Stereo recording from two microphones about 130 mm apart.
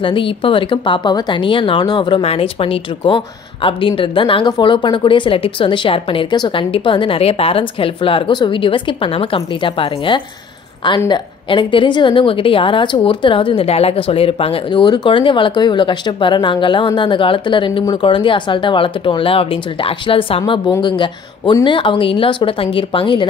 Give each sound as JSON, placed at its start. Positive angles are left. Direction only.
{"t": 0.0, "sound": "a woman's voice", "side_deg": 40}